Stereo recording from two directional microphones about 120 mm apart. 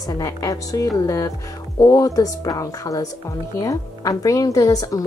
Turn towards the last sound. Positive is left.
turn(degrees=30)  # may be behind; listen again after turning